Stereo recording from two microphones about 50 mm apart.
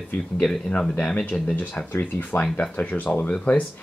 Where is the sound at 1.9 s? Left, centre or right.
Left.